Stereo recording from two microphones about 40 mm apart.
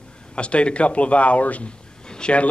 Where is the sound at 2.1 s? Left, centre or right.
Left.